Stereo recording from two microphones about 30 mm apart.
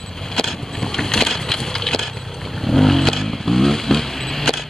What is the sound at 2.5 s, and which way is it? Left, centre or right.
Vehicle, centre.